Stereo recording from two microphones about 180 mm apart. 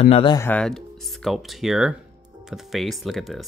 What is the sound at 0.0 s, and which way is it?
Speech, 30° left (ahead or behind).